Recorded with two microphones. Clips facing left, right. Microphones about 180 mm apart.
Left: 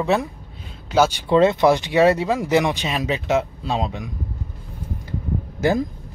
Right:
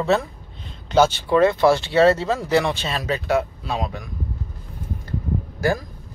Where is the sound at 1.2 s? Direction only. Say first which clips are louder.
Left 1 dB; 20° left (ahead or behind).